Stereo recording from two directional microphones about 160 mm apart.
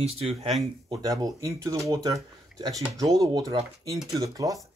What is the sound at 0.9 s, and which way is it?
Speech, 20° right (ahead or behind).